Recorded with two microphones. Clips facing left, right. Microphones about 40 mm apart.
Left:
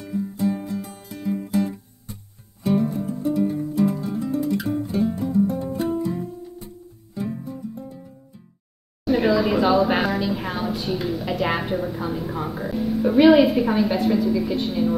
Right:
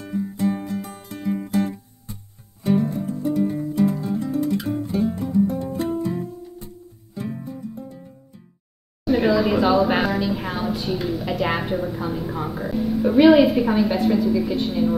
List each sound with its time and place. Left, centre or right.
0.0 s music: right
2.6 s music: centre
3.4 s guitar: centre
5.9 s music: centre
6.2 s music: centre
7.2 s music: centre
9.0 s a woman's voice: centre